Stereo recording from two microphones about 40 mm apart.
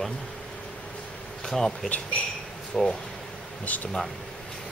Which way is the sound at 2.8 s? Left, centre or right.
Centre.